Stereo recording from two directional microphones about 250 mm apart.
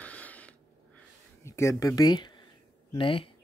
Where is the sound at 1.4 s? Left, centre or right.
Centre.